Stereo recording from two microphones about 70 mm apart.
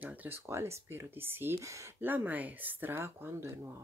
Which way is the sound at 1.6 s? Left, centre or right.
Right.